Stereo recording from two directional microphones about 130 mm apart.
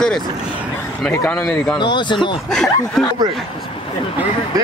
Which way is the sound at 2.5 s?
5° left (ahead or behind).